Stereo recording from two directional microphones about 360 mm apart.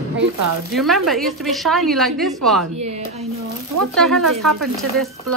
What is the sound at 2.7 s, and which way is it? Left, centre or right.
Speech, centre.